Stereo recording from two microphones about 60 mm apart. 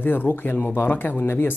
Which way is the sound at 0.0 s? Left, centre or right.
Left.